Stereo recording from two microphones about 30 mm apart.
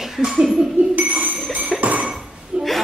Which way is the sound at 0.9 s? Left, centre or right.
Right.